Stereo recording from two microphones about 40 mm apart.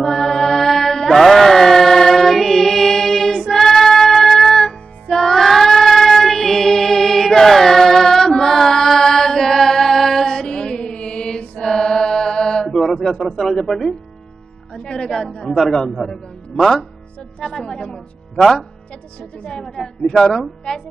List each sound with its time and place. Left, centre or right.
0.0 s mantra: centre
5.1 s child singing: centre
11.6 s chant: centre
12.6 s a man's voice: centre
14.7 s speech: left
15.0 s a man's voice: centre; by 18.4 s left
19.4 s a woman's voice: left